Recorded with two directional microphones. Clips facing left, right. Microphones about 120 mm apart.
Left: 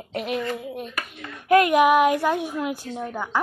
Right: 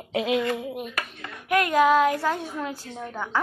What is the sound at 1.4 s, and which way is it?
Speech, 25° left (ahead or behind).